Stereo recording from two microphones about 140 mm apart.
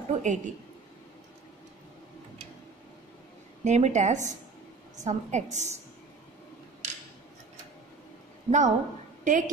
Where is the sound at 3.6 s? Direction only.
55° right (ahead or behind).